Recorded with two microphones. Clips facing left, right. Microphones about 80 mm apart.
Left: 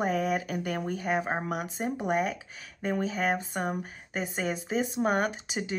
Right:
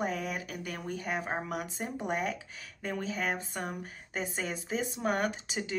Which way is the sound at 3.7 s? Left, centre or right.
Centre.